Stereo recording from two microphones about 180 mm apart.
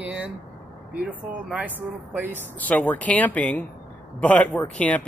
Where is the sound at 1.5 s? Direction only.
10° right (ahead or behind).